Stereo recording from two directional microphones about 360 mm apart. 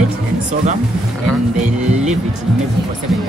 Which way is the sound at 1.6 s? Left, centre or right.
Centre.